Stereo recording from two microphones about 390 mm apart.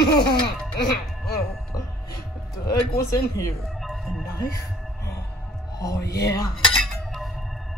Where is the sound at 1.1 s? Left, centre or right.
Centre.